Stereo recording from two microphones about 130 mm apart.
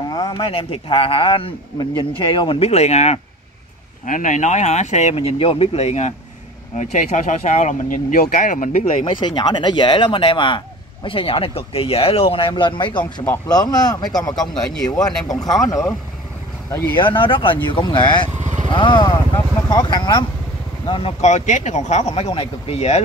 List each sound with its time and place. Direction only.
0.1 s a man's voice: 35° left (ahead or behind); by 3.2 s 60° left (ahead or behind)
4.0 s speech: 80° left
9.0 s a man's voice: 35° left (ahead or behind)
13.0 s speech: 20° left (ahead or behind)
13.5 s speech: 30° left (ahead or behind)
16.9 s speech: 40° left (ahead or behind)
18.4 s vehicle: 65° right (ahead or behind)
18.7 s speech: 40° left (ahead or behind)
21.2 s speech: 60° left (ahead or behind)